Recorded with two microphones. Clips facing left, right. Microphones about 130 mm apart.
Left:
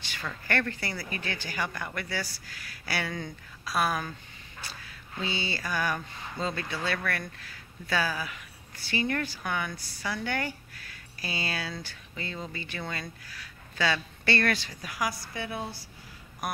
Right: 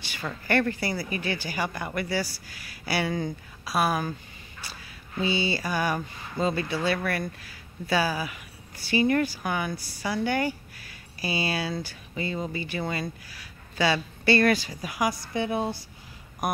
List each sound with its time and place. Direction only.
0.2 s speech: 15° right (ahead or behind)
3.1 s speech: 30° right (ahead or behind)
3.6 s speech: 10° right (ahead or behind)
5.2 s speech: 10° right (ahead or behind)